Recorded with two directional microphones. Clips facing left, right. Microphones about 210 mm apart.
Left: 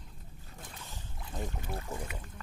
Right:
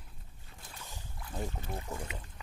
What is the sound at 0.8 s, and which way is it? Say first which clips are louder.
Boat: left 1 dB; 10° right (ahead or behind).